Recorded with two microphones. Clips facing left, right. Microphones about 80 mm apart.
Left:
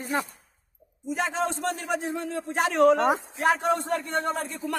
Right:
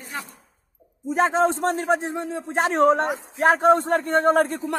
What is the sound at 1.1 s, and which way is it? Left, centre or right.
A man's voice, right.